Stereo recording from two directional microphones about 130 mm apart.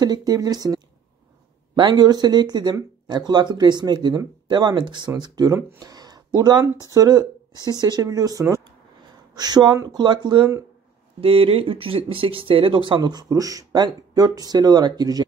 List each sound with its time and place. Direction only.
0.0 s speech: 30° right (ahead or behind)
11.1 s speech: 45° right (ahead or behind); by 15.2 s 30° right (ahead or behind)